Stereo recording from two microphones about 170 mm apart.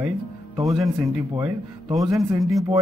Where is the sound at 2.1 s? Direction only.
20° right (ahead or behind).